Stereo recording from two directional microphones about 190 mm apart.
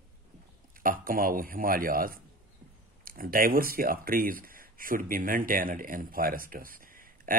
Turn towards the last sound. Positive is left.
turn(degrees=-45)  # may be behind; listen again after turning